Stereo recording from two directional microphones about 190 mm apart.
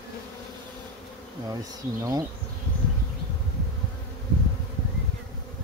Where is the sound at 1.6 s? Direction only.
20° right (ahead or behind).